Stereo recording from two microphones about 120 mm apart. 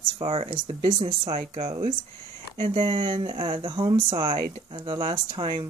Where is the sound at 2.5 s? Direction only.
45° right (ahead or behind).